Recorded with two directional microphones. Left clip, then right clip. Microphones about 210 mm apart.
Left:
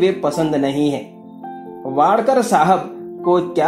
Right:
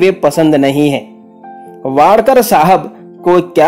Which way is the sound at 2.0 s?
50° right (ahead or behind).